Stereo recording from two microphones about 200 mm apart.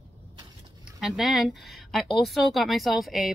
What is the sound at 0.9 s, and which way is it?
Speech, centre (ahead or behind).